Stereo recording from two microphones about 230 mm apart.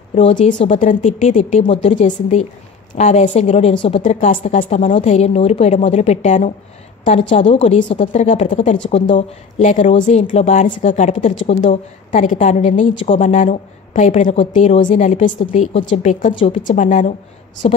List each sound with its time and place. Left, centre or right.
0.1 s a woman's voice: left